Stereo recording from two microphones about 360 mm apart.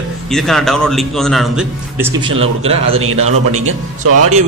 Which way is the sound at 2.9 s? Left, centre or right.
Right.